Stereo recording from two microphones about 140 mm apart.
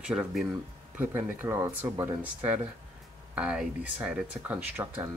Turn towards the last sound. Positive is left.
turn(degrees=-10)  # may be behind; listen again after turning